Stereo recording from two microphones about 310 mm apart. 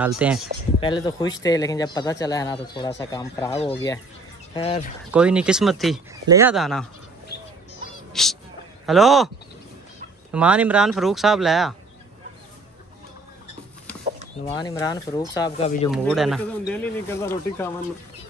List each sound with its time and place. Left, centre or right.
0.2 s speech: centre
0.7 s speech: centre
5.1 s speech: centre
8.1 s a sound: centre
8.8 s speech: centre
10.3 s speech: centre
14.4 s speech: centre
15.9 s speech: centre